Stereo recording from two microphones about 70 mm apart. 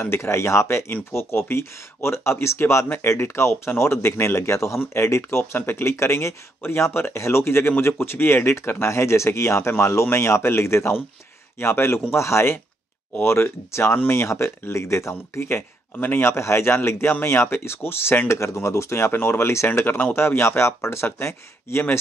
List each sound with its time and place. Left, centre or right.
0.0 s speech: left
18.3 s speech: left